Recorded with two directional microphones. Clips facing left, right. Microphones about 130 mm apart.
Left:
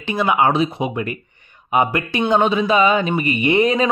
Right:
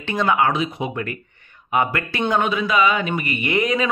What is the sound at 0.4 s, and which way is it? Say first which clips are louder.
Speech: left 3 dB; 25° left (ahead or behind).